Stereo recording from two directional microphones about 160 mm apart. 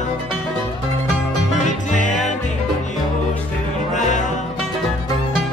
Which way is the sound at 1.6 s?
50° left (ahead or behind).